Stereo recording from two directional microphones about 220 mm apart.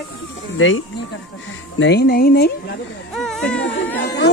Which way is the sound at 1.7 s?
55° left (ahead or behind).